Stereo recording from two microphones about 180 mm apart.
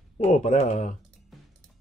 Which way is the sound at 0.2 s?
40° left (ahead or behind).